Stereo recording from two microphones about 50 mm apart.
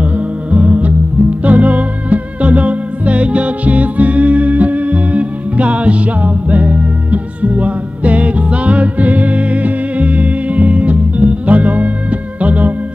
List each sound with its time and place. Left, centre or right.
0.0 s music: right